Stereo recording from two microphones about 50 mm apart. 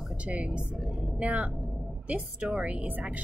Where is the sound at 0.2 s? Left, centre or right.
Right.